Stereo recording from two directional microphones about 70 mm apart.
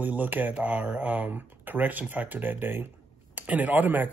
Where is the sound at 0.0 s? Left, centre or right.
Right.